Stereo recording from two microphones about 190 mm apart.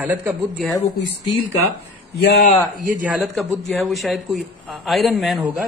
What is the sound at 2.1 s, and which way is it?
Speech, 60° left (ahead or behind).